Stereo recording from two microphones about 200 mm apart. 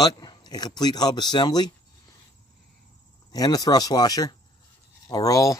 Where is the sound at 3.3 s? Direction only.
20° left (ahead or behind).